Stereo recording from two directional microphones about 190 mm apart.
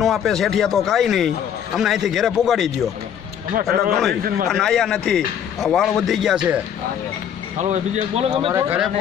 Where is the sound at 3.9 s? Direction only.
Centre (ahead or behind).